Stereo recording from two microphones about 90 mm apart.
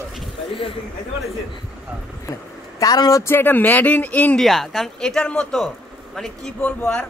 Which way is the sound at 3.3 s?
20° left (ahead or behind).